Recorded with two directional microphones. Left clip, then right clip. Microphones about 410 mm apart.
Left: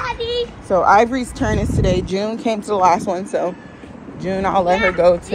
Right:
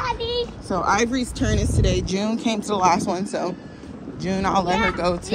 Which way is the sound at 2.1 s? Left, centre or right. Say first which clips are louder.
Left 4 dB; centre.